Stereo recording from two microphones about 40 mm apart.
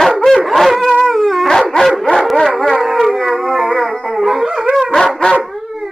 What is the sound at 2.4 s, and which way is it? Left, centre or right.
Howl, centre.